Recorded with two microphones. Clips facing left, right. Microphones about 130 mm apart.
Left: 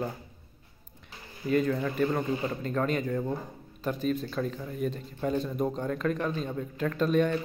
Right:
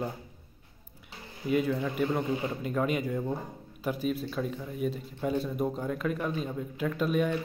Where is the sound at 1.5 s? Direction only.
10° right (ahead or behind).